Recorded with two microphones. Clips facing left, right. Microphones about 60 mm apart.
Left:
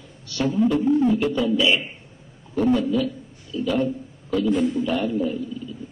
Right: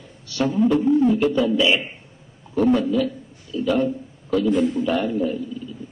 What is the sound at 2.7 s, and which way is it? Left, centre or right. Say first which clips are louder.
Music: right 1 dB; right.